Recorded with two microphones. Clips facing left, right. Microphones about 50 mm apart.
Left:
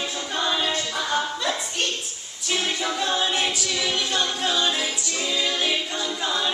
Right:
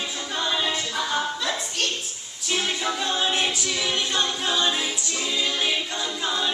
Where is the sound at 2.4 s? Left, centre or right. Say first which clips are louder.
Even; centre.